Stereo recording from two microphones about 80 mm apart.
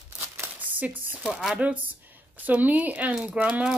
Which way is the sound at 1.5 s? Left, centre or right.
Centre.